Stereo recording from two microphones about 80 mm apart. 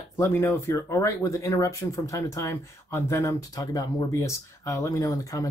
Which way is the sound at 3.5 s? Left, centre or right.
Left.